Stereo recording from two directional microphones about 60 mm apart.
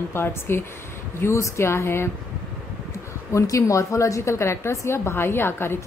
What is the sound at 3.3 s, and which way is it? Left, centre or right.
A woman's voice, left.